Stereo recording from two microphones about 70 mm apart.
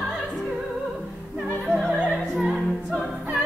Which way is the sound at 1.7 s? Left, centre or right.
Centre.